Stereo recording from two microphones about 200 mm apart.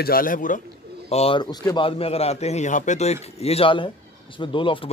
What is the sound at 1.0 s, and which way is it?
A man's voice, 30° left (ahead or behind).